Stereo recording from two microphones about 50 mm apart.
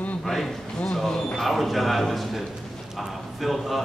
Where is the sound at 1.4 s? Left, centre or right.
Centre.